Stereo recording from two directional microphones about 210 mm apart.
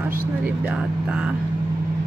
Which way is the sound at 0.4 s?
5° right (ahead or behind).